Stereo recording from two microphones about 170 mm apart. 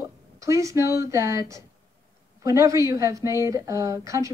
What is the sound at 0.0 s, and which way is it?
Speech, 20° right (ahead or behind).